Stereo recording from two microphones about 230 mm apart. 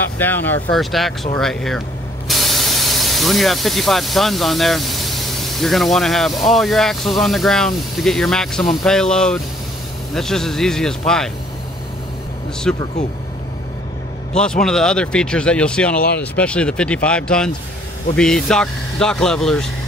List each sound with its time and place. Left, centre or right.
0.2 s speech: centre
12.7 s speech: centre
14.3 s speech: centre